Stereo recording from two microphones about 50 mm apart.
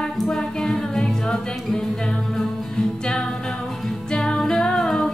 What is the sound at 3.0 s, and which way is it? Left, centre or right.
Music, centre.